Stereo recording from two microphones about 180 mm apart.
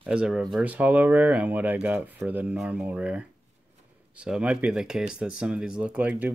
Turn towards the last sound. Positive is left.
turn(degrees=-5)  # may be behind; listen again after turning